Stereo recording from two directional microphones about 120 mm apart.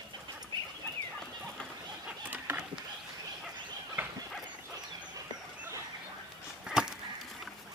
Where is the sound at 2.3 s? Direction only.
10° right (ahead or behind).